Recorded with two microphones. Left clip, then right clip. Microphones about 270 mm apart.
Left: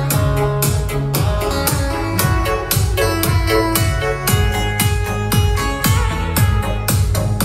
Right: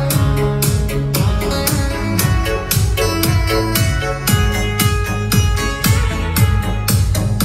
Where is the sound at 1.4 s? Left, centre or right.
Centre.